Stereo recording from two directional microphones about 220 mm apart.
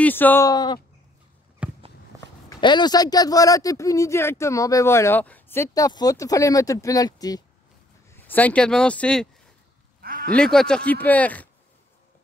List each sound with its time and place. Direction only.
0.0 s speech: 10° left (ahead or behind)
1.6 s walk: 5° right (ahead or behind)
2.5 s speech: 20° left (ahead or behind)
10.0 s a sound: 40° right (ahead or behind)
10.3 s speech: 5° left (ahead or behind)